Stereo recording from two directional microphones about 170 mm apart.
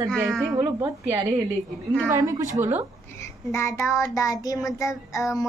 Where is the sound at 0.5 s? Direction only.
15° right (ahead or behind).